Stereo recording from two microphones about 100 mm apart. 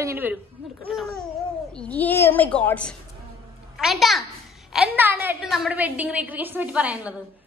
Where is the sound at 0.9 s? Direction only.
5° left (ahead or behind).